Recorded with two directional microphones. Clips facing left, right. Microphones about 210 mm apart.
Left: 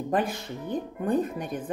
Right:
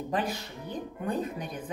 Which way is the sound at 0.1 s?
50° left (ahead or behind).